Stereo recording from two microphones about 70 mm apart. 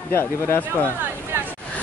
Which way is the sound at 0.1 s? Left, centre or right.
Left.